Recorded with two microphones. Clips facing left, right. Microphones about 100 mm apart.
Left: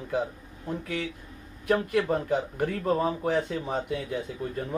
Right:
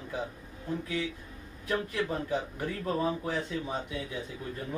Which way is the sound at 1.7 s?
55° left (ahead or behind).